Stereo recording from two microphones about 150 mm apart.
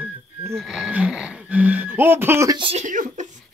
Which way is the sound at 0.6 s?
Centre (ahead or behind).